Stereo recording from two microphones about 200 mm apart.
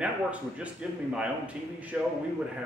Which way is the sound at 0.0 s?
5° right (ahead or behind).